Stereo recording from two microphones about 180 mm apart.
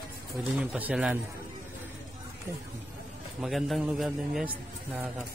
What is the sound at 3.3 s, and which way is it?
A man's voice, centre (ahead or behind).